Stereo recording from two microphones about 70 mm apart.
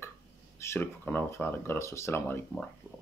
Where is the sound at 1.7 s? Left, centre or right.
Left.